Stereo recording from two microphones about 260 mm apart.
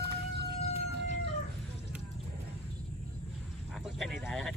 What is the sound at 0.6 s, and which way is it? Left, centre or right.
Whale vocalization, left.